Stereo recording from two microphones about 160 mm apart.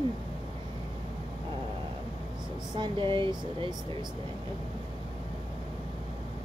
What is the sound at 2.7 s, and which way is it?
Speech, 30° right (ahead or behind).